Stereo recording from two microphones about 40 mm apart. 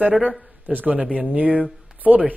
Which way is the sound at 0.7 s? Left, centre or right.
Right.